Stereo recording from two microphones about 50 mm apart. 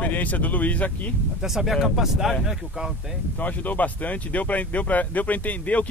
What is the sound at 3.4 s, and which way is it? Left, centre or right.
Speech, left.